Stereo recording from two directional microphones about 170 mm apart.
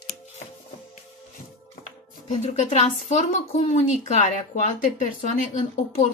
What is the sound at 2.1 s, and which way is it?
A woman's voice, 45° left (ahead or behind).